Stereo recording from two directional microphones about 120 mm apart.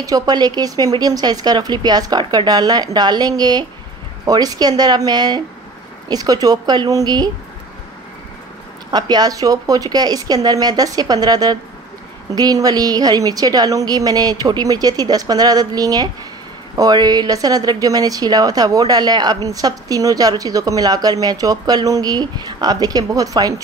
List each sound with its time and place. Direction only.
0.0 s speech: 30° right (ahead or behind)
8.9 s speech: 35° right (ahead or behind)